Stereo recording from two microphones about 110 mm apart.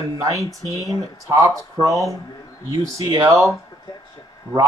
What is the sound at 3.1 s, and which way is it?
Speech, 30° right (ahead or behind).